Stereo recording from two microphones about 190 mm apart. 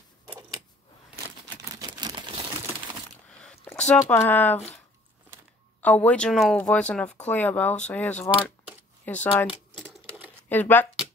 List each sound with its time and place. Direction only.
0.3 s a sound: 20° right (ahead or behind)
1.8 s crumpling: 20° right (ahead or behind)
3.3 s a sound: 5° left (ahead or behind)
5.8 s speech: 10° left (ahead or behind)
9.5 s typewriter: 10° right (ahead or behind)
10.5 s speech: 10° left (ahead or behind)